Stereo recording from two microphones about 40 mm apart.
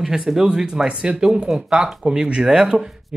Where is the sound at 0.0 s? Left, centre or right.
Centre.